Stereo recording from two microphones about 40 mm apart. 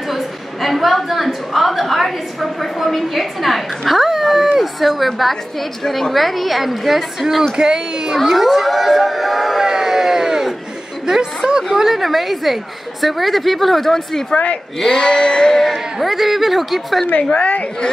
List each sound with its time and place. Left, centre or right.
0.1 s a sound: centre
4.6 s a woman's voice: centre
7.5 s speech: centre
8.2 s speech: centre
9.7 s a sound: centre
11.1 s a woman's voice: centre
14.3 s a sound: left
15.7 s a woman's voice: centre
17.2 s a woman's voice: left